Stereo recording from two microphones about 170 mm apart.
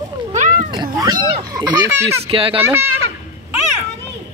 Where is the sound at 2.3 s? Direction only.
30° right (ahead or behind).